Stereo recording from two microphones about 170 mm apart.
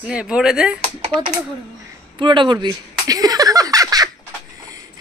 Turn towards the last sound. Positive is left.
turn(degrees=-20)  # may be behind; listen again after turning